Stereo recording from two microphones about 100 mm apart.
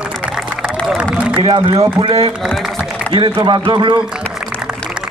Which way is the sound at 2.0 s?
70° right (ahead or behind).